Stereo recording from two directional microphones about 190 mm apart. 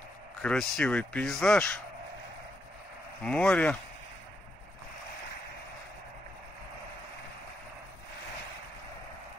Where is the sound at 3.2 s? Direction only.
5° left (ahead or behind).